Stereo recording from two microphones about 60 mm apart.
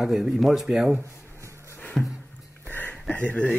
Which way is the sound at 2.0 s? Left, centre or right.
Centre.